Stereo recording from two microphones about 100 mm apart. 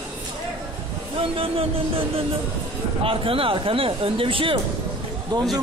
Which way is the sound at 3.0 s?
65° right (ahead or behind).